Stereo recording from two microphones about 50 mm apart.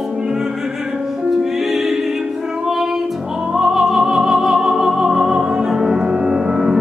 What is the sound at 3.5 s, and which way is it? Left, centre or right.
Music, centre.